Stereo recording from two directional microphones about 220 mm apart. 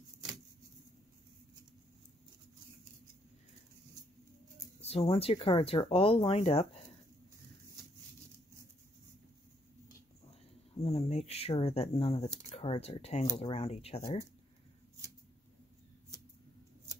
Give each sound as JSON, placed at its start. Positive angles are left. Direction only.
{"t": 4.8, "sound": "speech", "side_deg": 25}
{"t": 10.7, "sound": "a sound", "side_deg": 25}
{"t": 12.4, "sound": "speech", "side_deg": 25}